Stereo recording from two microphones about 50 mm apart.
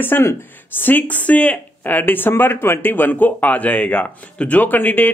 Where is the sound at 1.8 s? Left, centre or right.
Left.